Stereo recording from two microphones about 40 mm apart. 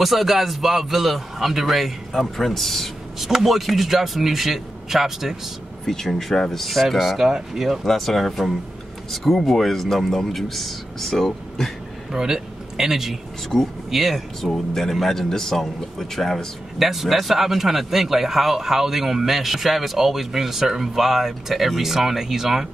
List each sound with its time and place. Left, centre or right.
0.0 s speech: centre
3.2 s speech: centre
5.9 s speech: centre
7.2 s speech: centre
7.8 s speech: centre
12.1 s a man's voice: centre
14.5 s speech: centre
16.7 s speech: centre